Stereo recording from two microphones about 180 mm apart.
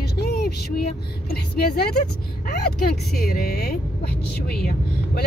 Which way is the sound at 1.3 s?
60° left (ahead or behind).